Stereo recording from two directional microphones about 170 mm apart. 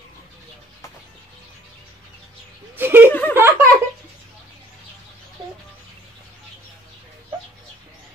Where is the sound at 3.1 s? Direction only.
10° left (ahead or behind).